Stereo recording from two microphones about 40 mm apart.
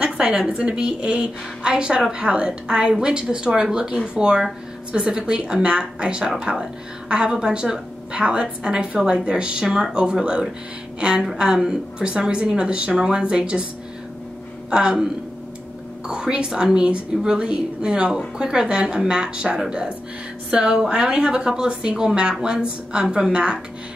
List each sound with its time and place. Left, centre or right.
0.0 s a woman's voice: right
14.7 s a woman's voice: centre
16.1 s a woman's voice: right